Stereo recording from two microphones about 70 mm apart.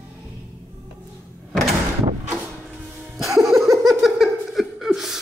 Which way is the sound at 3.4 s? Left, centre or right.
Centre.